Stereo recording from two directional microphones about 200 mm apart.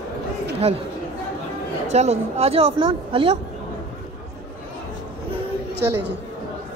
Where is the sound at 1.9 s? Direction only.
35° right (ahead or behind).